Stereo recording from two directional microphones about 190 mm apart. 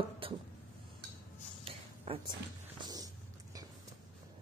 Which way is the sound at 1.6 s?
30° right (ahead or behind).